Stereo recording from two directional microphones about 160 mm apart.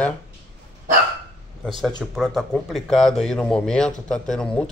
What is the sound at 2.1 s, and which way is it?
A man's voice, centre (ahead or behind).